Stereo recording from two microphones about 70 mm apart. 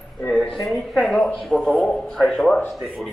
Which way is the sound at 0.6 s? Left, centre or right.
Centre.